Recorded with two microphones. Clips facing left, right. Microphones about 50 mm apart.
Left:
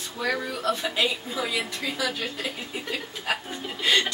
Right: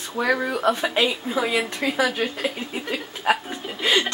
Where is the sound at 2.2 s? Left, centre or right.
Right.